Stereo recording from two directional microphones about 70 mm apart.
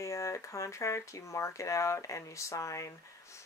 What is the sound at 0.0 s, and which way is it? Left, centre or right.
Speech, left.